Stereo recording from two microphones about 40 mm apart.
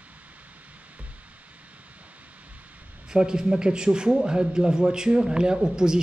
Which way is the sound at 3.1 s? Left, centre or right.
Centre.